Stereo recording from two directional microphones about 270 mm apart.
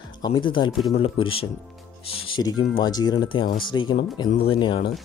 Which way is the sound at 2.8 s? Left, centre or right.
Centre.